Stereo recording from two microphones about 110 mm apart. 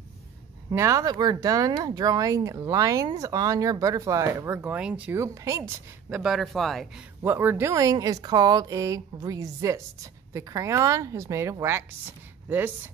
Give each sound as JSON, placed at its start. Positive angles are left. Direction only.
{"t": 0.7, "sound": "speech", "side_deg": -25}
{"t": 5.1, "sound": "speech", "side_deg": -25}
{"t": 6.0, "sound": "speech", "side_deg": -5}
{"t": 7.2, "sound": "speech", "side_deg": -20}
{"t": 7.7, "sound": "speech", "side_deg": -35}